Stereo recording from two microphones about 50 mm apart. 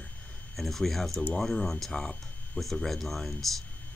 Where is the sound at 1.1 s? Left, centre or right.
Left.